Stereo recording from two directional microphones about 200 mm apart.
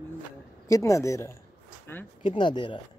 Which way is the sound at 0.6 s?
15° left (ahead or behind).